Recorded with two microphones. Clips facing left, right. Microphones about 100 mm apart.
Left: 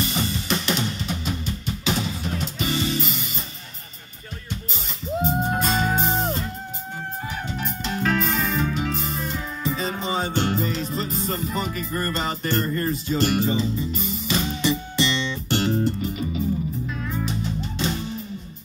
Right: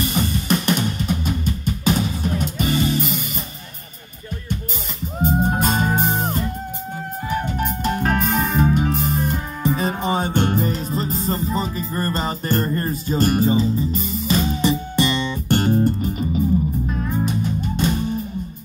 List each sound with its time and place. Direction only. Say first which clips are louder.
0.0 s drum kit: right 4 dB; 50° right (ahead or behind)
5.2 s music: right 5 dB; 50° right (ahead or behind)
7.4 s music: right 6 dB; 50° right (ahead or behind)